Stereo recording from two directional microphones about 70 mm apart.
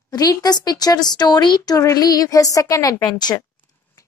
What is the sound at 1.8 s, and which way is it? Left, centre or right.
A woman's voice, left.